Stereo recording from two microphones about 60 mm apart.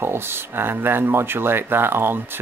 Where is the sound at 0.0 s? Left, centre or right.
Right.